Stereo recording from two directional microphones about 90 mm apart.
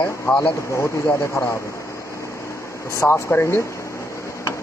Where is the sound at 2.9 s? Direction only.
30° left (ahead or behind).